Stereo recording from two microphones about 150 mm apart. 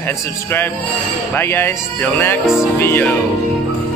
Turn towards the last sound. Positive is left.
turn(degrees=15)  # may be behind; listen again after turning